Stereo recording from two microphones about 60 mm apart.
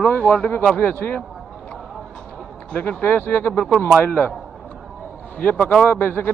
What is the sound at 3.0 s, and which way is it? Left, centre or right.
Speech, left.